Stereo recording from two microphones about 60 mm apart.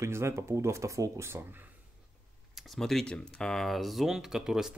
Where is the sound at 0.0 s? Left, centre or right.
Right.